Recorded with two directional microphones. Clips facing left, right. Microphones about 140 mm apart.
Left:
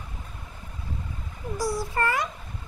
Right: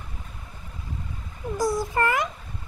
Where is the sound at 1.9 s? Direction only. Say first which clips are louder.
Right 2 dB; 20° right (ahead or behind).